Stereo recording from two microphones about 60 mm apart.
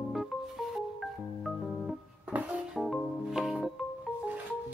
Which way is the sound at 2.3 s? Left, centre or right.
Right.